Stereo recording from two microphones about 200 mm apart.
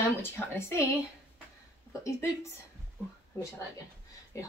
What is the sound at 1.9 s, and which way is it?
Speech, 15° left (ahead or behind).